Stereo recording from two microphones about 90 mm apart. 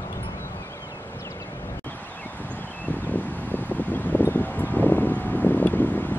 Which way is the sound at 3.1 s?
20° left (ahead or behind).